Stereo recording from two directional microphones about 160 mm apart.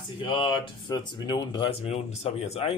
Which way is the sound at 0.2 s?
30° left (ahead or behind).